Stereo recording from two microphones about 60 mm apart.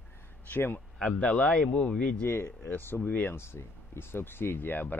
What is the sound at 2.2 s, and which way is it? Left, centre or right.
Speech, left.